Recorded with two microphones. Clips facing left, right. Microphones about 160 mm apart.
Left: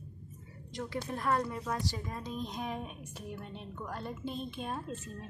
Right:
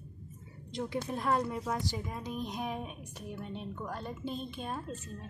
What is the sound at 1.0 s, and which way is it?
A woman's voice, 15° right (ahead or behind).